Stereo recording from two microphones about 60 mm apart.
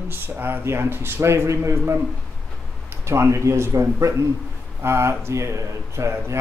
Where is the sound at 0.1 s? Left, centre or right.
Right.